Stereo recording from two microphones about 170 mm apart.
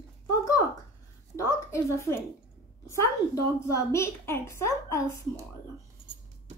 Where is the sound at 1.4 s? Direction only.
15° left (ahead or behind).